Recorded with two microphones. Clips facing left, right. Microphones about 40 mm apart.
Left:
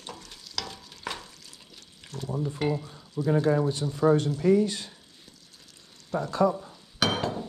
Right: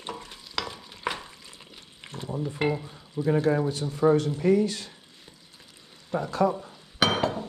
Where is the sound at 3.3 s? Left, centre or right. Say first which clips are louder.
Left 1 dB; right.